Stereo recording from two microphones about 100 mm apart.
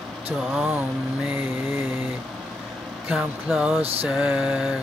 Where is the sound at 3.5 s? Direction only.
20° right (ahead or behind).